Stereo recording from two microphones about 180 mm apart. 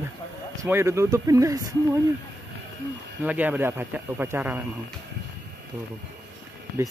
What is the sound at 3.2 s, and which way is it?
Speech, 10° right (ahead or behind).